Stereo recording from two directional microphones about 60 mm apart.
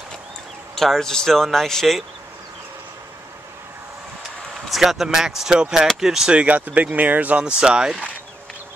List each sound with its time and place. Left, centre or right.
0.7 s speech: centre
4.6 s speech: centre
6.3 s speech: right